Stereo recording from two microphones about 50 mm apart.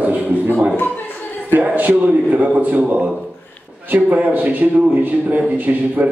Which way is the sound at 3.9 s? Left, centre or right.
Right.